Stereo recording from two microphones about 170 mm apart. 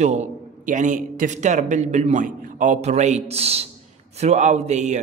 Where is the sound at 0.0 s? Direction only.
45° right (ahead or behind).